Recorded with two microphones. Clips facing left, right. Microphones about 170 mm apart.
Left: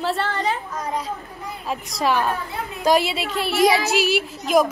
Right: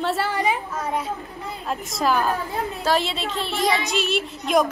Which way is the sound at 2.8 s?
10° left (ahead or behind).